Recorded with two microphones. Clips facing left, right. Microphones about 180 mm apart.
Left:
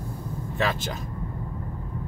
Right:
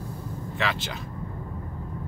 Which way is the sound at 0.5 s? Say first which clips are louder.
Left 3 dB; 45° left (ahead or behind).